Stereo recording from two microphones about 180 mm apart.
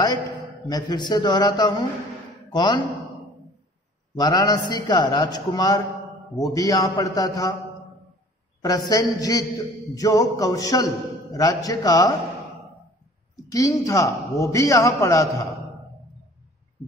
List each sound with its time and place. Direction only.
0.7 s a man's voice: 20° left (ahead or behind)
4.1 s a man's voice: 20° left (ahead or behind)
8.6 s a man's voice: 20° left (ahead or behind)
13.5 s a man's voice: 20° left (ahead or behind)